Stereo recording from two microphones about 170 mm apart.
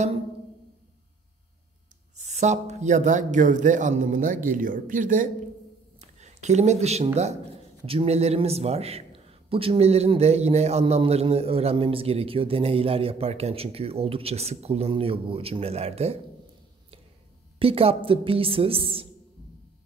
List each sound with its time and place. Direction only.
2.1 s speech: 45° right (ahead or behind)
5.9 s a sound: 40° right (ahead or behind)
7.8 s a man's voice: 35° right (ahead or behind)
17.6 s a man's voice: 35° right (ahead or behind)